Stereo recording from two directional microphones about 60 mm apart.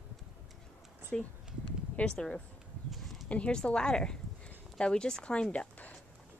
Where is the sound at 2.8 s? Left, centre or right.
Centre.